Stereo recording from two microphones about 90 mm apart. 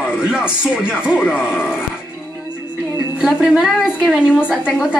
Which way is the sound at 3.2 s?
5° right (ahead or behind).